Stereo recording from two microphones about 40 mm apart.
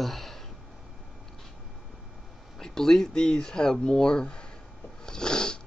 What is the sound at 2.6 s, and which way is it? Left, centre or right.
Speech, centre.